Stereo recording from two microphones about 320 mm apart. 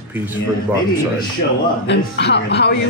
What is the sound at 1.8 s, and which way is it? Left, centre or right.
Speech, left.